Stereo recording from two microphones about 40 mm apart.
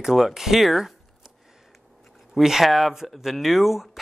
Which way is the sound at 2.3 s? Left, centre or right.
Centre.